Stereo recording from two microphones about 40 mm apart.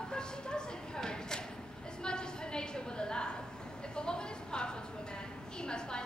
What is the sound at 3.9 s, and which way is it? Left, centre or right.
A woman's voice, left.